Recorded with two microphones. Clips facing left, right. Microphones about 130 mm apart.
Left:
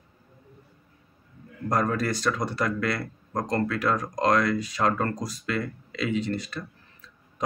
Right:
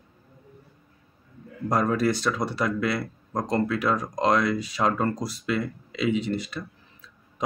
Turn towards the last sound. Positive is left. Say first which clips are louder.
# right 2 dB
turn(degrees=-20)  # may be behind; listen again after turning